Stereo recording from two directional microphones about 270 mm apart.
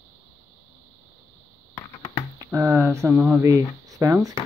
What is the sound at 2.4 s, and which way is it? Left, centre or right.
Speech, centre.